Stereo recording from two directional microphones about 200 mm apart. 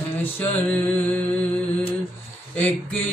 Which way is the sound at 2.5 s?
5° left (ahead or behind).